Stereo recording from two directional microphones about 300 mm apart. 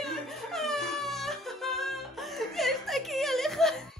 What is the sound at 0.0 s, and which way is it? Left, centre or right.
Music, centre.